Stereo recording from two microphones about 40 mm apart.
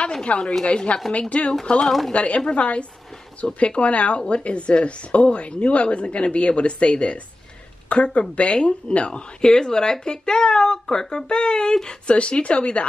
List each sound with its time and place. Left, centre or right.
0.4 s speech: centre
0.7 s speech: left
1.8 s speech: centre
2.1 s speech: left; by 11.9 s centre
12.1 s speech: left